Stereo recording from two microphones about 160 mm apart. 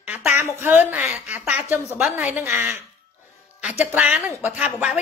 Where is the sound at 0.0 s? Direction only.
10° right (ahead or behind).